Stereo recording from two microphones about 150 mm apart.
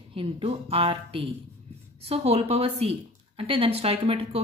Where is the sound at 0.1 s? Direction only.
40° right (ahead or behind).